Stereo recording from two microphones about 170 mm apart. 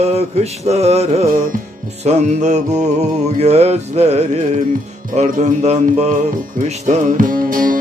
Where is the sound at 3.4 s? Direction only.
40° right (ahead or behind).